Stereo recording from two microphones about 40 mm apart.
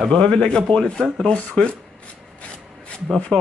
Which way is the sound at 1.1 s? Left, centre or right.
Left.